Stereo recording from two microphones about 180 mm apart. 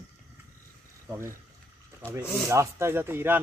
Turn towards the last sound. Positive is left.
turn(degrees=-10)  # may be behind; listen again after turning